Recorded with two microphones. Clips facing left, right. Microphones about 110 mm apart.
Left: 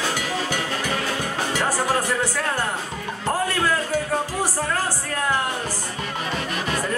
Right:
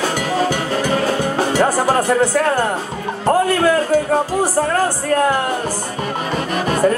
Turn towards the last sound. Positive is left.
turn(degrees=-50)  # may be behind; listen again after turning